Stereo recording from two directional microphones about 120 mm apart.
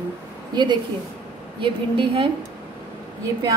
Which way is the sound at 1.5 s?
45° right (ahead or behind).